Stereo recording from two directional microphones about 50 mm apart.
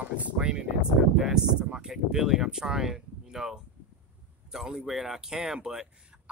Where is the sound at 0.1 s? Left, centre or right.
Right.